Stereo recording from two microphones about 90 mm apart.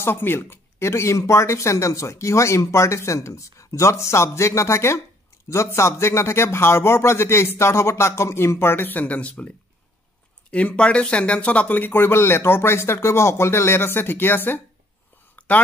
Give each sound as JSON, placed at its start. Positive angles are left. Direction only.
{"t": 0.0, "sound": "speech", "side_deg": 25}
{"t": 10.5, "sound": "speech", "side_deg": 15}
{"t": 15.3, "sound": "a sound", "side_deg": 15}